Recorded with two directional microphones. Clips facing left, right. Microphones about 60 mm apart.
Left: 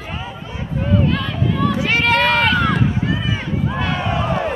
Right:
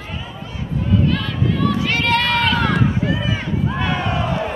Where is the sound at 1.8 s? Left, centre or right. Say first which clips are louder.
Left 2 dB; centre.